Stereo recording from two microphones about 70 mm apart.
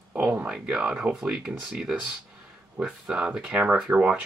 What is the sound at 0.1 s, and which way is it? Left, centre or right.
Speech, right.